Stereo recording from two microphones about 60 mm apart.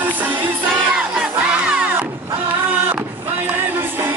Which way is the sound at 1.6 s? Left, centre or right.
Centre.